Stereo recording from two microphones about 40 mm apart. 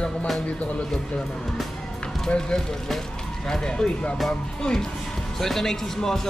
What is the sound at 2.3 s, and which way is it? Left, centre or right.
Speech, left.